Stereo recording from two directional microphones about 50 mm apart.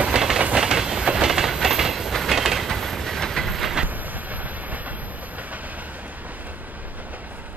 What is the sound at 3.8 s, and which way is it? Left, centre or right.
Train, right.